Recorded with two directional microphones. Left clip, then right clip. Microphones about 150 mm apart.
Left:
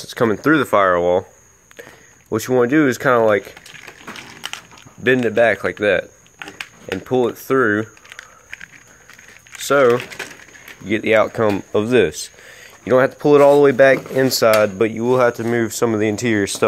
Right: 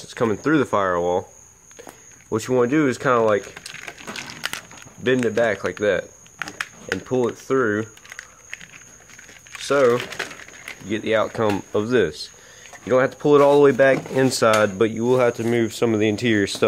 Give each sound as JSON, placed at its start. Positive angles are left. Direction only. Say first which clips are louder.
{"t": 0.0, "sound": "speech", "louder": "left 5 dB", "side_deg": 25}
{"t": 5.0, "sound": "speech", "louder": "left 5 dB", "side_deg": 15}
{"t": 7.1, "sound": "speech", "louder": "left 5 dB", "side_deg": 20}
{"t": 8.2, "sound": "a sound", "louder": "left 2 dB", "side_deg": 5}
{"t": 9.6, "sound": "speech", "louder": "left 4 dB", "side_deg": 25}
{"t": 11.5, "sound": "speech", "louder": "left 4 dB", "side_deg": 5}
{"t": 12.8, "sound": "speech", "louder": "left 4 dB", "side_deg": 25}
{"t": 13.2, "sound": "speech", "louder": "left 3 dB", "side_deg": 10}